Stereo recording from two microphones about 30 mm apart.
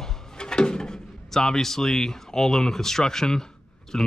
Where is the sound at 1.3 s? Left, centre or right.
Centre.